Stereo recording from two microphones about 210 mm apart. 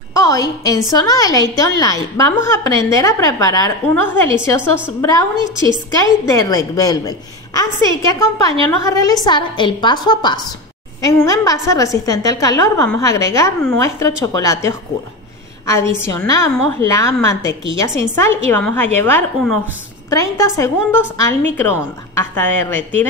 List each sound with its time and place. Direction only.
0.1 s a sound: 15° left (ahead or behind)
0.8 s a woman's voice: 15° left (ahead or behind)
16.1 s a woman's voice: 15° left (ahead or behind)